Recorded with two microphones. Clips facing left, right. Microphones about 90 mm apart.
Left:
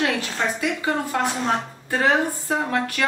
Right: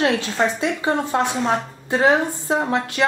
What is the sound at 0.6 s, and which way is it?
Speech, 25° right (ahead or behind).